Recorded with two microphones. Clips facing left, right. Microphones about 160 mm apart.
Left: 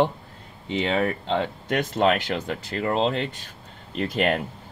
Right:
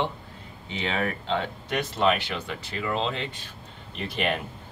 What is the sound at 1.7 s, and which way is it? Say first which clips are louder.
Speech: left 3 dB; 50° left (ahead or behind).